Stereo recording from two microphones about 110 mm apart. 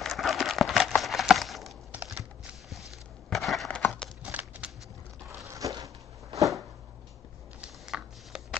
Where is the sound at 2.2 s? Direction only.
Centre (ahead or behind).